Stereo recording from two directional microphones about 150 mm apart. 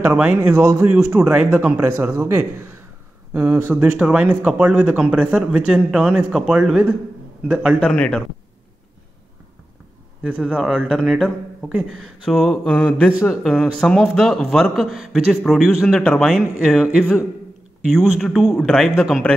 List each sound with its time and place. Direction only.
0.0 s speech: 10° right (ahead or behind)
7.8 s speech: 5° left (ahead or behind)
10.2 s speech: 10° right (ahead or behind)
10.5 s a man's voice: 5° left (ahead or behind)